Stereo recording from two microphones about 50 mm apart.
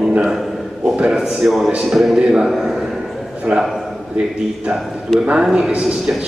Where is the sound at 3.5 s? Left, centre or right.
Right.